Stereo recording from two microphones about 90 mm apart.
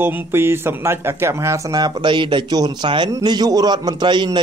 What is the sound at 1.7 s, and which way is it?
A man's voice, 55° right (ahead or behind).